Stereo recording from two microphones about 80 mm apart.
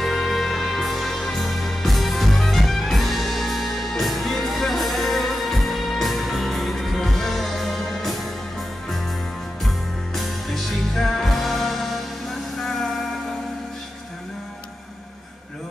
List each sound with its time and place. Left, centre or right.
0.0 s music: centre